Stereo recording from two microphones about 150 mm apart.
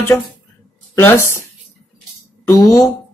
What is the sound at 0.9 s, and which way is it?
Speech, 20° left (ahead or behind).